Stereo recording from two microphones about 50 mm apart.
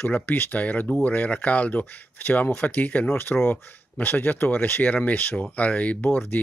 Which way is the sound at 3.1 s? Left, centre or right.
Left.